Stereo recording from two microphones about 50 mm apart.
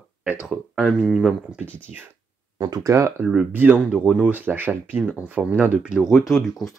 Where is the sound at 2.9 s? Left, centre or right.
Right.